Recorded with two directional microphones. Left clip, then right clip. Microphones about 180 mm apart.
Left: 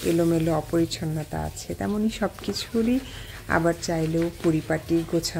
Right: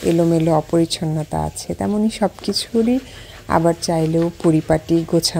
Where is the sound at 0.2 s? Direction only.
25° right (ahead or behind).